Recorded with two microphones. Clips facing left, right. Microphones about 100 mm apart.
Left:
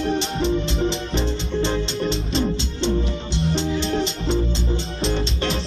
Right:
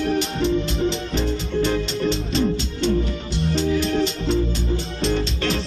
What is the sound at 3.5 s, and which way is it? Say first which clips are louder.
Music: right 3 dB; 25° left (ahead or behind).